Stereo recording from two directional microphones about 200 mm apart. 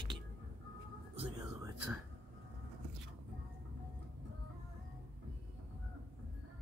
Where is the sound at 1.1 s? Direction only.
20° right (ahead or behind).